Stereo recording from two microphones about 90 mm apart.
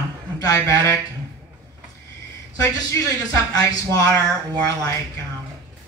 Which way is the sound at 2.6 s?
35° left (ahead or behind).